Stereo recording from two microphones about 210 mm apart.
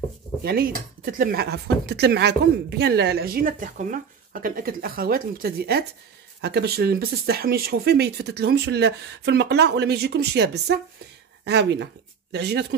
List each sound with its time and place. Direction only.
0.4 s speech: 45° right (ahead or behind)